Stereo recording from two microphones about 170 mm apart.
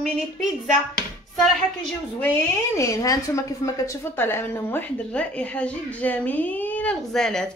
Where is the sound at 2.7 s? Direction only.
20° left (ahead or behind).